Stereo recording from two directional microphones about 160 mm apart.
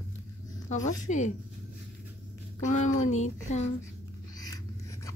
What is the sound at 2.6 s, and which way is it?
Speech, 50° left (ahead or behind).